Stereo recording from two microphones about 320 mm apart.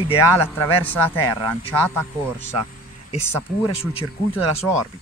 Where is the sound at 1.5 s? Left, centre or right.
Centre.